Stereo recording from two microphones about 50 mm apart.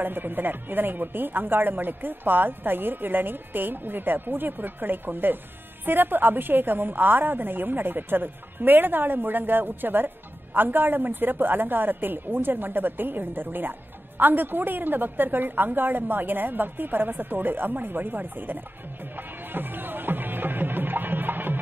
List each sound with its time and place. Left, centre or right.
0.0 s a woman's voice: right
19.1 s music: right